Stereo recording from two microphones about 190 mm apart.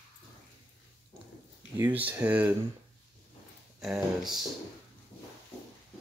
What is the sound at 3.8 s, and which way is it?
Speech, centre (ahead or behind).